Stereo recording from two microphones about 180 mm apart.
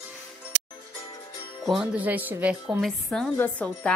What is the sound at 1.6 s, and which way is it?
A woman's voice, centre (ahead or behind).